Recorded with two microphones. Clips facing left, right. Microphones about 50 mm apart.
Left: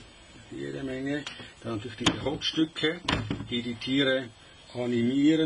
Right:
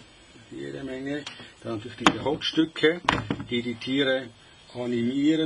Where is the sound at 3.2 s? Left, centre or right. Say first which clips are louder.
Right 4 dB; right.